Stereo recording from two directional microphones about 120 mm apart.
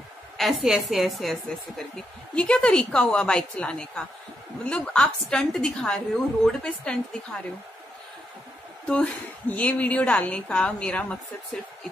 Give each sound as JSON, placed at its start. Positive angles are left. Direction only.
{"t": 0.4, "sound": "a woman's voice", "side_deg": 0}
{"t": 8.8, "sound": "a woman's voice", "side_deg": 10}